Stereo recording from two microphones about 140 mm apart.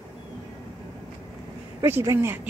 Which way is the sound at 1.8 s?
20° right (ahead or behind).